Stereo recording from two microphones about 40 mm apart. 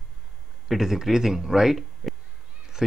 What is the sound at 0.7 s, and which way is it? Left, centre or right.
Speech, centre.